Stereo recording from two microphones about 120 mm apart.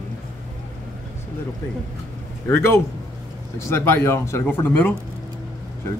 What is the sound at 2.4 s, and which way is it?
Speech, 20° left (ahead or behind).